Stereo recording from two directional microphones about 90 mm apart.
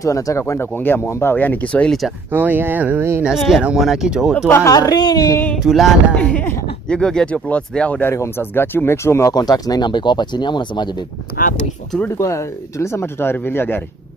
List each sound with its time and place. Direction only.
0.0 s speech: 35° left (ahead or behind)
0.7 s speech: 25° left (ahead or behind)
2.3 s speech: 20° right (ahead or behind)
3.3 s speech: 5° right (ahead or behind)
4.4 s speech: 30° left (ahead or behind)
5.6 s speech: centre (ahead or behind)
6.1 s speech: 15° left (ahead or behind)
8.1 s speech: 30° left (ahead or behind)
9.3 s speech: 50° left (ahead or behind)
12.2 s speech: 35° left (ahead or behind)